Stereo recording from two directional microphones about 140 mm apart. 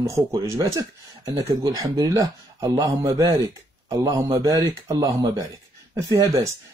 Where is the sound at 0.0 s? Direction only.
25° right (ahead or behind).